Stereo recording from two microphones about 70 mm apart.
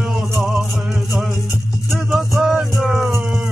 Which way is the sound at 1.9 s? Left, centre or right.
Centre.